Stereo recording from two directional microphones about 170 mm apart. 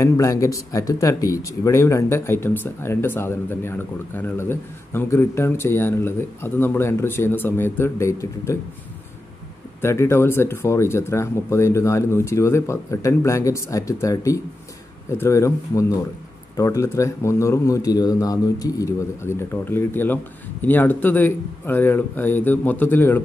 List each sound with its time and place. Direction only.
0.0 s speech: 20° left (ahead or behind)
9.8 s speech: 15° left (ahead or behind)